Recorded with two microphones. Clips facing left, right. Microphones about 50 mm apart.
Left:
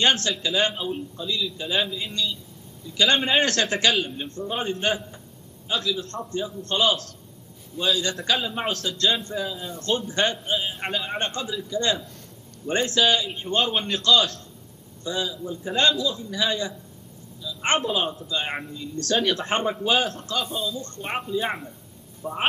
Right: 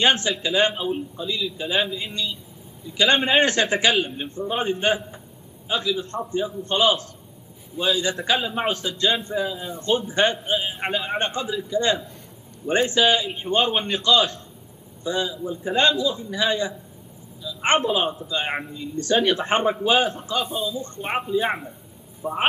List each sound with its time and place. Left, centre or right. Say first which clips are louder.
0.0 s a man's voice: right 2 dB; centre